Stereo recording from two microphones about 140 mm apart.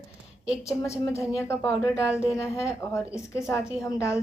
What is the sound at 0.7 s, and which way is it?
A woman's voice, 20° left (ahead or behind).